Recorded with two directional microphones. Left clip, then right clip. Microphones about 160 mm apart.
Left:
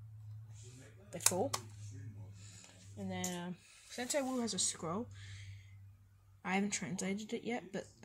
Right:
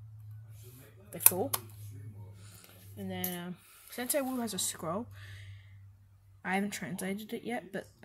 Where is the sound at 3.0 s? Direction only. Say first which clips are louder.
Right 2 dB; 15° right (ahead or behind).